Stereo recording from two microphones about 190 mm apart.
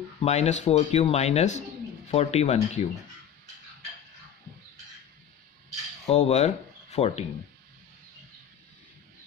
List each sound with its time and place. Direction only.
0.2 s speech: 35° left (ahead or behind)
6.0 s speech: 35° left (ahead or behind)